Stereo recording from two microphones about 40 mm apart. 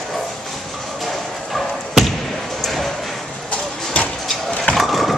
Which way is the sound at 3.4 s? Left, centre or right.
Left.